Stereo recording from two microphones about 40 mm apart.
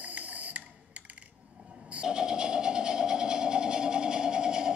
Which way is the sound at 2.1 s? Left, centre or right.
Centre.